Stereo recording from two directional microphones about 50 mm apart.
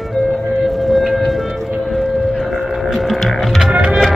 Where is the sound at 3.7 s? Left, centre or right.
Right.